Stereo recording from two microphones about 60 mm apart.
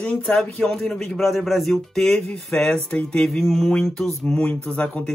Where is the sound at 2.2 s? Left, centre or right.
Centre.